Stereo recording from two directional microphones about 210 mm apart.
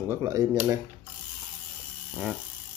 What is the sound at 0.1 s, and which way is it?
Speech, 15° right (ahead or behind).